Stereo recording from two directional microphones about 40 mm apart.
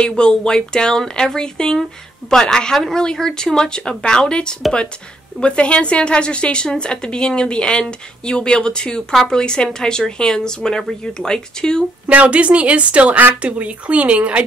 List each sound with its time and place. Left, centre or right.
0.0 s speech: left
9.1 s speech: centre
12.1 s speech: right